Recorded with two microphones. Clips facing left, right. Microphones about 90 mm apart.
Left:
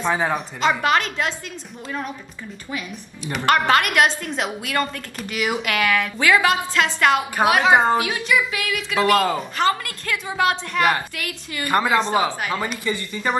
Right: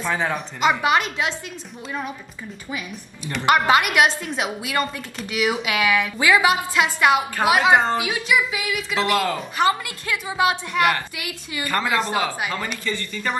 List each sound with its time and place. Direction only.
0.0 s speech: 15° left (ahead or behind)
0.6 s speech: 10° right (ahead or behind)
3.4 s speech: 10° right (ahead or behind)
7.7 s speech: 15° left (ahead or behind)
8.0 s speech: 5° right (ahead or behind)
8.9 s speech: 15° left (ahead or behind)
9.6 s speech: 15° right (ahead or behind)
11.6 s speech: 15° left (ahead or behind)